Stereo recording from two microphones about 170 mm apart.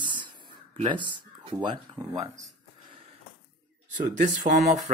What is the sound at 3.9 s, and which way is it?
Speech, 45° right (ahead or behind).